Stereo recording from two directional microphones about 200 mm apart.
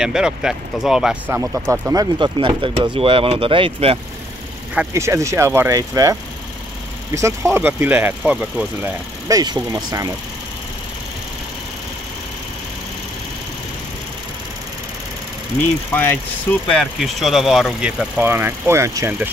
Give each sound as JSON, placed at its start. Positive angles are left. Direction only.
{"t": 0.0, "sound": "speech", "side_deg": -5}
{"t": 4.7, "sound": "speech", "side_deg": -15}
{"t": 7.2, "sound": "speech", "side_deg": -15}
{"t": 9.3, "sound": "speech", "side_deg": -20}
{"t": 15.9, "sound": "speech", "side_deg": 10}